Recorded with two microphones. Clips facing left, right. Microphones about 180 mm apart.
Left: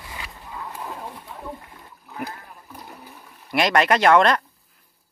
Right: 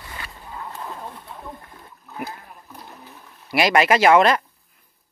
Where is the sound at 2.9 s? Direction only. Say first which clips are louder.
Left 1 dB; 10° left (ahead or behind).